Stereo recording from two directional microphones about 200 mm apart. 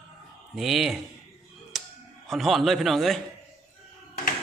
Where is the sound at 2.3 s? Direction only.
Centre (ahead or behind).